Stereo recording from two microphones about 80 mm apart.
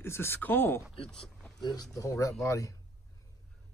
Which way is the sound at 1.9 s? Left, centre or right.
Left.